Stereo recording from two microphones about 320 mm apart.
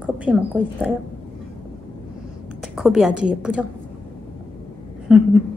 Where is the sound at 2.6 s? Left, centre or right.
Centre.